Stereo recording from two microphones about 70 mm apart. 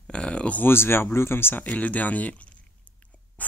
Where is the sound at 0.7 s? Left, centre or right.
Left.